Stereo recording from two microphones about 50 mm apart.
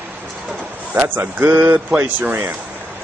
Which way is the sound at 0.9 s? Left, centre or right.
Right.